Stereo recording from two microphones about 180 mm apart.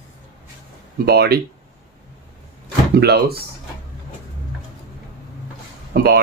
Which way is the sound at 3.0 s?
65° right (ahead or behind).